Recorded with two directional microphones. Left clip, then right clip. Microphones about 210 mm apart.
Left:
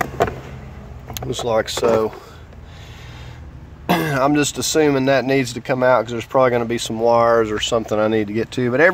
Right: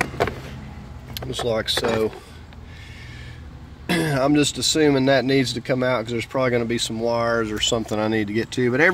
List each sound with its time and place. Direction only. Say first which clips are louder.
1.1 s speech: left 4 dB; 20° left (ahead or behind)
3.9 s speech: left 3 dB; 20° left (ahead or behind)